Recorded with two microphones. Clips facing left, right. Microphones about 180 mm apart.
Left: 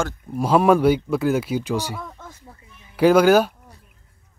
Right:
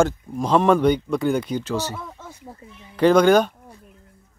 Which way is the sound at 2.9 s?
5° left (ahead or behind).